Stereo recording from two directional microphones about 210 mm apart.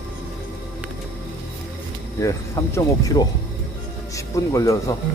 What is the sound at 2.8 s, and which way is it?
Speech, 15° left (ahead or behind).